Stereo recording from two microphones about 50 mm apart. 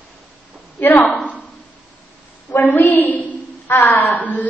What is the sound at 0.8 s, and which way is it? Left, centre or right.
Speech, left.